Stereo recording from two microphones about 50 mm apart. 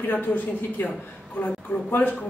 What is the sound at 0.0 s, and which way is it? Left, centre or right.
Speech, left.